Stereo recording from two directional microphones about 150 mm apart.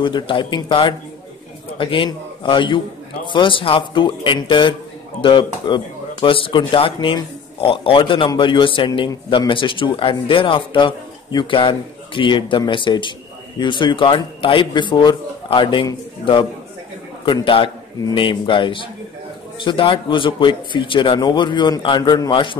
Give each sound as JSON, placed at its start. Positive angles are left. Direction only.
{"t": 0.0, "sound": "speech", "side_deg": 35}